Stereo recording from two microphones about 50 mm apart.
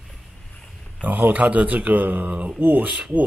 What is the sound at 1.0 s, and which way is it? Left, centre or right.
Speech, right.